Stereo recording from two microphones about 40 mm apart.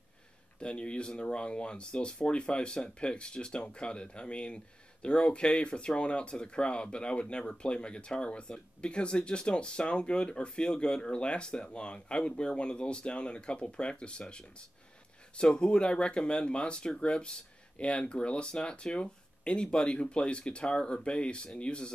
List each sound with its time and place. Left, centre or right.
0.6 s speech: left
15.3 s speech: left